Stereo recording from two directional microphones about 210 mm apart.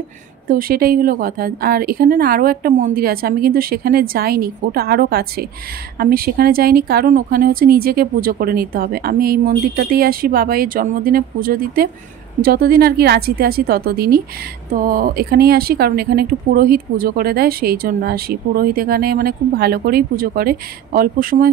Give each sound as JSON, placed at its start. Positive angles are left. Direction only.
{"t": 0.5, "sound": "speech", "side_deg": -45}